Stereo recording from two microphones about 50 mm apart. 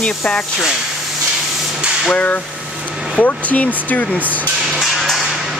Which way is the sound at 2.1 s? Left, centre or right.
Left.